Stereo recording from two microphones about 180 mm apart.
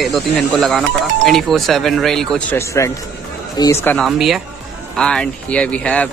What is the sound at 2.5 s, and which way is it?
Speech, 15° left (ahead or behind).